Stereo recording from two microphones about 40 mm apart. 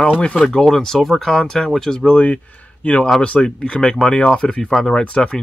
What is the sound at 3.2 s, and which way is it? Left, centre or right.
Speech, left.